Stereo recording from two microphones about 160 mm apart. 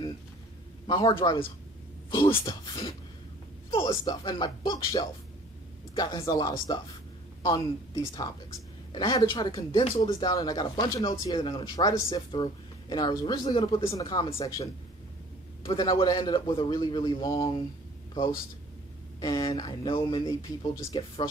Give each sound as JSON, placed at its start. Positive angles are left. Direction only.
{"t": 0.8, "sound": "a man's voice", "side_deg": 30}
{"t": 11.0, "sound": "a man's voice", "side_deg": 35}
{"t": 13.6, "sound": "a man's voice", "side_deg": 35}
{"t": 19.1, "sound": "a man's voice", "side_deg": 25}
{"t": 20.2, "sound": "a man's voice", "side_deg": 20}